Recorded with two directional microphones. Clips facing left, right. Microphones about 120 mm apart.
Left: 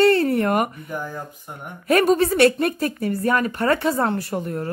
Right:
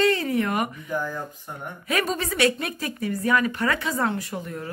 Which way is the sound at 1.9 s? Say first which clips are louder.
Left 9 dB; 55° left (ahead or behind).